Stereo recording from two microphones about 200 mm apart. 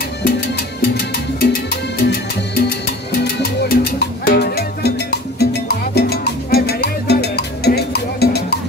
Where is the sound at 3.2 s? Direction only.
55° left (ahead or behind).